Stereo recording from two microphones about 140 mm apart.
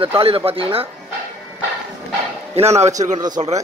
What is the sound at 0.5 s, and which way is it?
Speech, 40° right (ahead or behind).